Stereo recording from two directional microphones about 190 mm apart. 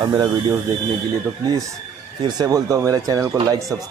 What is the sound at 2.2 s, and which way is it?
Speech, 20° right (ahead or behind).